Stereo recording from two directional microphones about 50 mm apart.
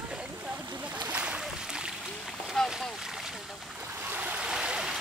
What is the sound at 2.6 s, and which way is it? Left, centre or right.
Boat, centre.